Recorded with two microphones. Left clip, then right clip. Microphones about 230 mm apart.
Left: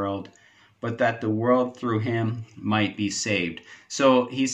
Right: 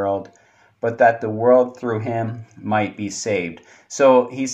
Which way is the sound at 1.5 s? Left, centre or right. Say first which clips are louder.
Right 7 dB; centre.